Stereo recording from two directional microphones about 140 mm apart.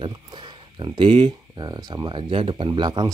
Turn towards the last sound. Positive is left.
turn(degrees=-35)  # may be behind; listen again after turning